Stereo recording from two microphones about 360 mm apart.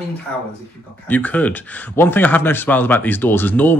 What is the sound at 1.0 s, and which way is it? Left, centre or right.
Speech, centre.